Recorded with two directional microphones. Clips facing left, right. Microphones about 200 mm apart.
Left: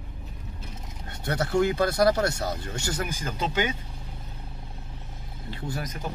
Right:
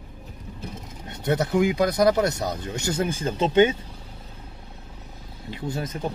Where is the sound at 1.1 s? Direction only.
20° right (ahead or behind).